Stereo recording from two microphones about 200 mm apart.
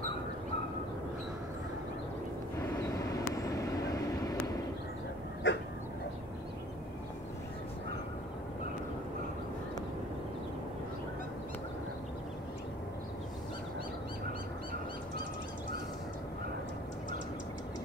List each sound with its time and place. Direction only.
2.6 s vehicle: 15° left (ahead or behind)
5.4 s dog: 65° left (ahead or behind)